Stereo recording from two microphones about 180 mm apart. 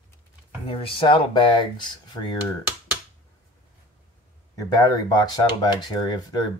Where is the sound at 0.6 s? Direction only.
30° left (ahead or behind).